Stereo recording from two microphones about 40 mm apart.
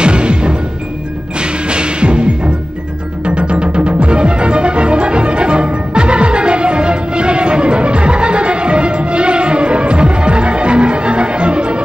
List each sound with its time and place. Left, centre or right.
0.0 s music: right